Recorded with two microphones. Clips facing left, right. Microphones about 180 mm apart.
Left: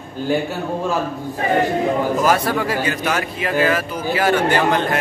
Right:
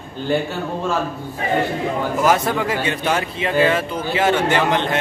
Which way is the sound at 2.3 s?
20° right (ahead or behind).